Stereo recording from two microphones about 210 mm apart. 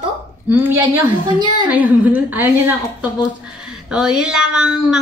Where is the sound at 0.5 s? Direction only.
10° right (ahead or behind).